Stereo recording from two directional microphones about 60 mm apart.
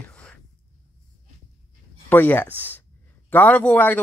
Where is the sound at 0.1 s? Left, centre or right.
Centre.